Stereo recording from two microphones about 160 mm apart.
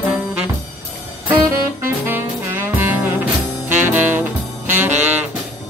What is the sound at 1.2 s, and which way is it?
Saxophone, 10° right (ahead or behind).